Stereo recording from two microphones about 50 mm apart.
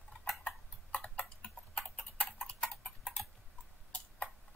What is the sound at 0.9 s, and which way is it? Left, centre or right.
Tick-tock, left.